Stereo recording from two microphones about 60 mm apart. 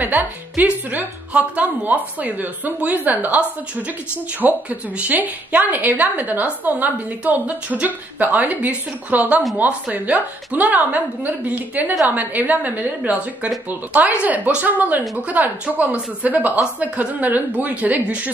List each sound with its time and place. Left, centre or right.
0.0 s a woman's voice: right